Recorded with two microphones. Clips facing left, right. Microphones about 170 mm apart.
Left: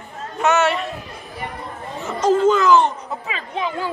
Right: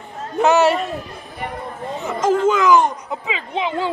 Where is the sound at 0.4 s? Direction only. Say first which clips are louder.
Right 4 dB; 35° right (ahead or behind).